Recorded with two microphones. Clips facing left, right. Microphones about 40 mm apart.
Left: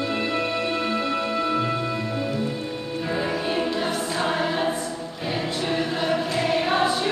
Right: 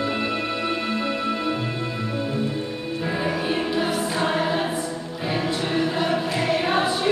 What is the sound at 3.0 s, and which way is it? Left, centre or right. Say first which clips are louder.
Music: right 1 dB; centre.